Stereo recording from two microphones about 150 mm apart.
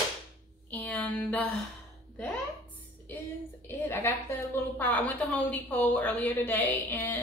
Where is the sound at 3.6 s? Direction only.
15° left (ahead or behind).